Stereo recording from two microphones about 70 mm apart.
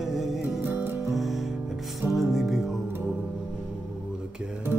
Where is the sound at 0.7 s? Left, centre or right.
Right.